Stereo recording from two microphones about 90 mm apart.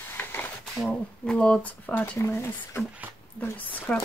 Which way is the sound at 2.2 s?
30° left (ahead or behind).